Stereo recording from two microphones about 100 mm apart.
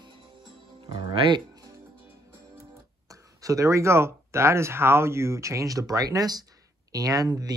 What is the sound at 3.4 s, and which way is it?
Speech, 35° right (ahead or behind).